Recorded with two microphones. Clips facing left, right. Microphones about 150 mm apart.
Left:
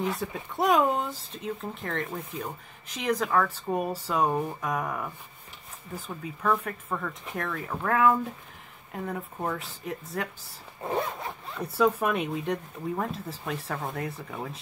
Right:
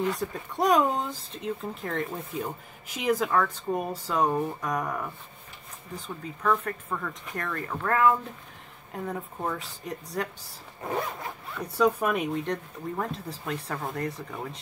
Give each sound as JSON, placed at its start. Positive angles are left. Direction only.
{"t": 0.0, "sound": "speech", "side_deg": 5}
{"t": 11.7, "sound": "speech", "side_deg": 5}